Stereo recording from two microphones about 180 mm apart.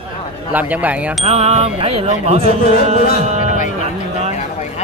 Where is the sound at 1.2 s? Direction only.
35° right (ahead or behind).